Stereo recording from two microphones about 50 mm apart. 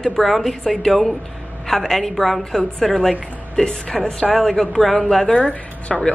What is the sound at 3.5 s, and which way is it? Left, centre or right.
A woman's voice, centre.